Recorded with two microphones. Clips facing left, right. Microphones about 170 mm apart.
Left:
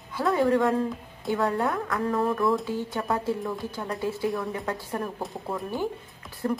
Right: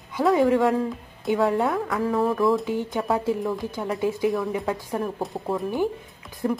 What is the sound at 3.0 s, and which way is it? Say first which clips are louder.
Speech: right 4 dB; 5° right (ahead or behind).